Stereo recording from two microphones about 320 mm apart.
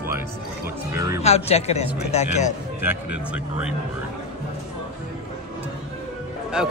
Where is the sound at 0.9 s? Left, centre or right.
Centre.